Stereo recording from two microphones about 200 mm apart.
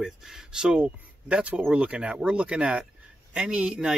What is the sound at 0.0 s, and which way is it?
Speech, 5° right (ahead or behind).